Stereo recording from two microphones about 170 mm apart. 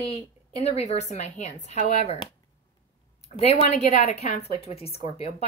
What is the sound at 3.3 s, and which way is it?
A woman's voice, 35° left (ahead or behind).